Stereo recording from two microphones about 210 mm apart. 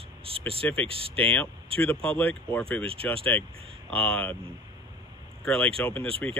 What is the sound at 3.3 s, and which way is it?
Speech, 10° left (ahead or behind).